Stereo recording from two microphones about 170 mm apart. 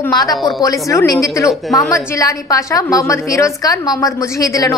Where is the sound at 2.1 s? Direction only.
20° left (ahead or behind).